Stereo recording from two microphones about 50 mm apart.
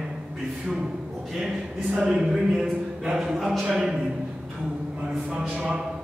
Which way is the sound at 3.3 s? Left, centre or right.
Centre.